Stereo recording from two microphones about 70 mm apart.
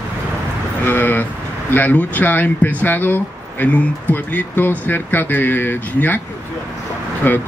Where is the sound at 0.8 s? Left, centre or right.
Left.